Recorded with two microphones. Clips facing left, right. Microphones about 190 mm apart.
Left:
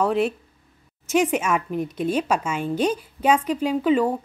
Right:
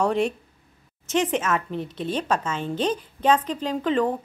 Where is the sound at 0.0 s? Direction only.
5° left (ahead or behind).